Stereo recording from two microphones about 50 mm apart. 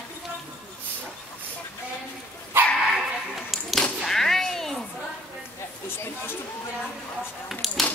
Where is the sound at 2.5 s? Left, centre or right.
Right.